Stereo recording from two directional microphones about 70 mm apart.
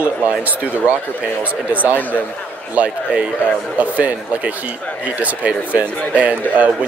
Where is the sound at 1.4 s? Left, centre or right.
Right.